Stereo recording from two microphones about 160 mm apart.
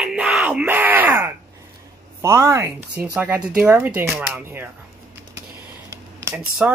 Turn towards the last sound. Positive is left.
turn(degrees=-5)  # may be behind; listen again after turning